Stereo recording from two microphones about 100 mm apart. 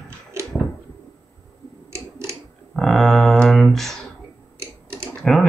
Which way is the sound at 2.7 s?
Centre (ahead or behind).